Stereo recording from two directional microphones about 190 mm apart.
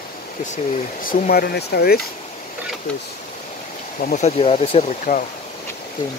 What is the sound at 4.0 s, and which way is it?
Speech, 40° left (ahead or behind).